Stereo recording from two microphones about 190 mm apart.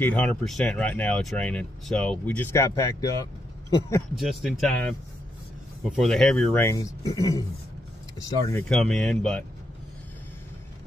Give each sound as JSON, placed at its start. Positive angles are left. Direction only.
{"t": 0.0, "sound": "speech", "side_deg": 5}
{"t": 4.2, "sound": "speech", "side_deg": 0}
{"t": 5.9, "sound": "speech", "side_deg": 0}
{"t": 8.6, "sound": "speech", "side_deg": 5}